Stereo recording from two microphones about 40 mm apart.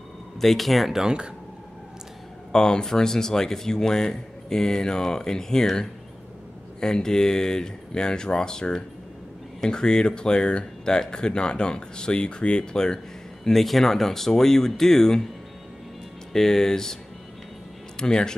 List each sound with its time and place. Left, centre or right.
0.4 s speech: centre
0.9 s speech: centre
2.5 s speech: centre
16.3 s speech: centre
17.9 s speech: centre